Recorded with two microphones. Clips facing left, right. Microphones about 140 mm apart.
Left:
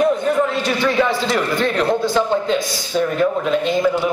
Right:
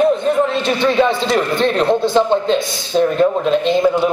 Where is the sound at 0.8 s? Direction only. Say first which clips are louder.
Right 3 dB; 25° right (ahead or behind).